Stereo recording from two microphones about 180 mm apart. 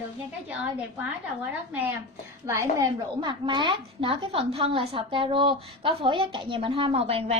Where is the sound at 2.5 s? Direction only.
15° right (ahead or behind).